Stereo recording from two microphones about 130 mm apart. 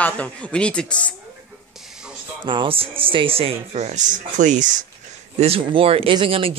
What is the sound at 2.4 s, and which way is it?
Speech, 40° right (ahead or behind).